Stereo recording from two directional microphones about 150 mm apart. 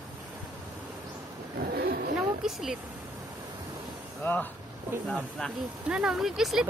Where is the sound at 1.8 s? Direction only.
85° right.